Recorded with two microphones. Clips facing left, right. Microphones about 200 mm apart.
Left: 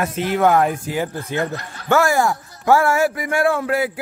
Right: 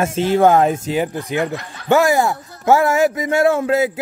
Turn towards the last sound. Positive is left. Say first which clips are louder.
# right 4 dB
turn(degrees=-20)  # may be behind; listen again after turning